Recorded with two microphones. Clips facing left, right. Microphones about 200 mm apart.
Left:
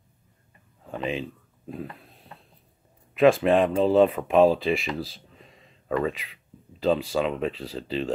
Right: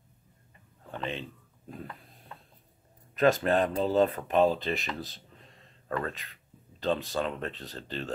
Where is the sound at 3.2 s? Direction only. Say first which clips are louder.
Left 6 dB; 90° left.